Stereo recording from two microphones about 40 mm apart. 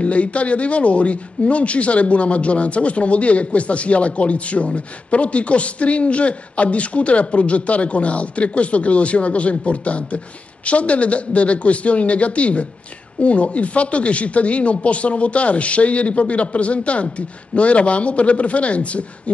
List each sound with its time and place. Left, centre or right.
0.0 s a man's voice: left